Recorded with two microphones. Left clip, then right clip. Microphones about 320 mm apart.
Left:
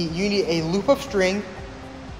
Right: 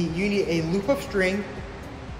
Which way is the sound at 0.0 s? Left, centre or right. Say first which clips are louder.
Left 2 dB; left.